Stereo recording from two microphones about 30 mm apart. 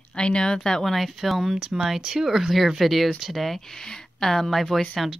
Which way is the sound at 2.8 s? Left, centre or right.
Centre.